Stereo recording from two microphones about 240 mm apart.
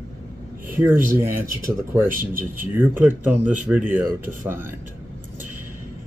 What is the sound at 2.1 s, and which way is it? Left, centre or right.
Speech, right.